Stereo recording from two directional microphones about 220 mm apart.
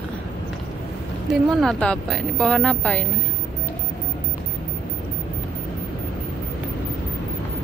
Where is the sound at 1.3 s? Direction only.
Centre (ahead or behind).